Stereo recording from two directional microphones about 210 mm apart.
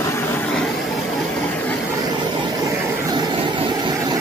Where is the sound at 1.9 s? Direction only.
20° right (ahead or behind).